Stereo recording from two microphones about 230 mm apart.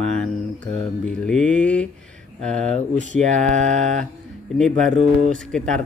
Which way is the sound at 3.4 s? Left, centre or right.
Right.